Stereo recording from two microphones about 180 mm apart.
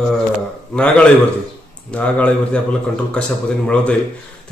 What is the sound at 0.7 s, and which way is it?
Speech, 5° left (ahead or behind).